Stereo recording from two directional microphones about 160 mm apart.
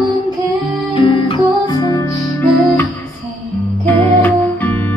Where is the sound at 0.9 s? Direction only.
35° left (ahead or behind).